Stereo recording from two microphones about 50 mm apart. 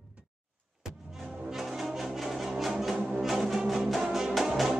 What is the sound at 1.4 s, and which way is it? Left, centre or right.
Music, centre.